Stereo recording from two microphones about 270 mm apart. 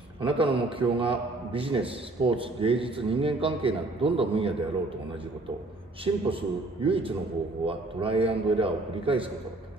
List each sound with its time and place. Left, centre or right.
0.2 s a man's voice: centre
6.3 s a man's voice: centre